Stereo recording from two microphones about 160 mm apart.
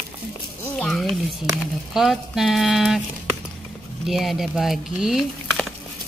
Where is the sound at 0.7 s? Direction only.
Centre (ahead or behind).